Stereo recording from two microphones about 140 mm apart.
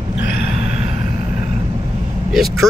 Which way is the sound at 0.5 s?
50° right (ahead or behind).